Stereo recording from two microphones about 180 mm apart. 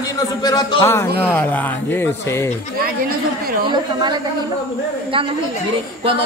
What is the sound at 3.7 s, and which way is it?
Speech, 25° right (ahead or behind).